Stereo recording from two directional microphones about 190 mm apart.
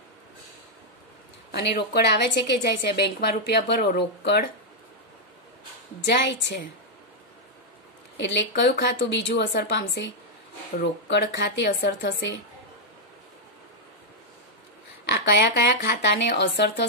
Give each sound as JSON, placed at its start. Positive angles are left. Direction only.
{"t": 1.5, "sound": "a woman's voice", "side_deg": 60}
{"t": 6.0, "sound": "a woman's voice", "side_deg": 65}
{"t": 8.2, "sound": "a woman's voice", "side_deg": 70}
{"t": 15.2, "sound": "a woman's voice", "side_deg": 70}